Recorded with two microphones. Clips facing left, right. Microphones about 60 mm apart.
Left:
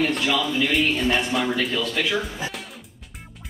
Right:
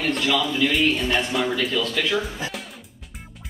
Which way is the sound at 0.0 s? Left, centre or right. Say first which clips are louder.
Even; centre.